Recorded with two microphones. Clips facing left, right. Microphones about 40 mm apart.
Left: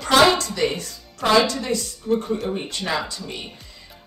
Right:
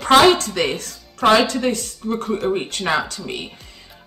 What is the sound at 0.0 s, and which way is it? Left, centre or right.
Speech, right.